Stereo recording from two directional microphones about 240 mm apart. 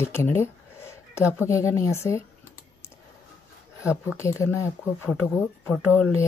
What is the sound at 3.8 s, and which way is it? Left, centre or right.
Speech, centre.